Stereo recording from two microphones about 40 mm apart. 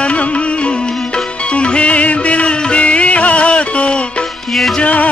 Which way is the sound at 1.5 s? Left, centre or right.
Left.